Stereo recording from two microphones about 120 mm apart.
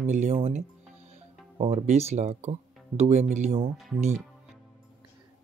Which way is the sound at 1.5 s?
65° right (ahead or behind).